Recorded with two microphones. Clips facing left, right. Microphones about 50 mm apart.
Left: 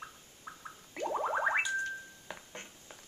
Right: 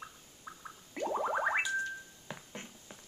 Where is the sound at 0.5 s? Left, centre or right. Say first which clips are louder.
Left 1 dB; left.